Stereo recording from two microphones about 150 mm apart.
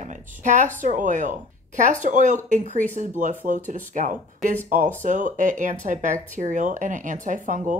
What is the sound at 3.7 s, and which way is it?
Speech, 55° right (ahead or behind).